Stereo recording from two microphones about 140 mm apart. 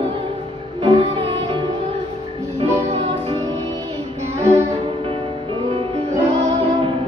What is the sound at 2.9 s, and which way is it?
Music, 40° right (ahead or behind).